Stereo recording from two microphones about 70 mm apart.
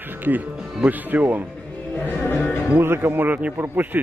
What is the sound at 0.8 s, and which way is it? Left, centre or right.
Speech, right.